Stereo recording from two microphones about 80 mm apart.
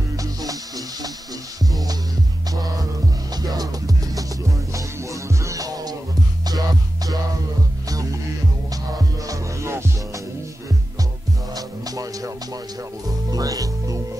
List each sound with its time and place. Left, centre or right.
0.2 s music: right
2.5 s music: right
7.9 s music: right
9.3 s music: right
11.5 s music: right
13.3 s music: right